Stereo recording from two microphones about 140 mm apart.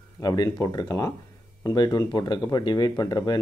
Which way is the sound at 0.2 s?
30° left (ahead or behind).